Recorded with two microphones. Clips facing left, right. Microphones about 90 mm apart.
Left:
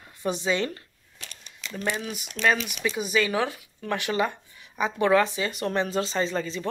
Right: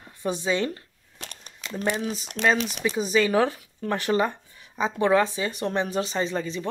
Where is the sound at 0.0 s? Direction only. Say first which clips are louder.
Even; 20° right (ahead or behind).